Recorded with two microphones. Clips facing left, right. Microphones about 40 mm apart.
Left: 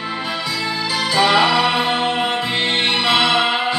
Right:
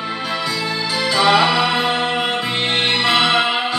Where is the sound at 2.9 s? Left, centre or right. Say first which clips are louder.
Right 1 dB; left.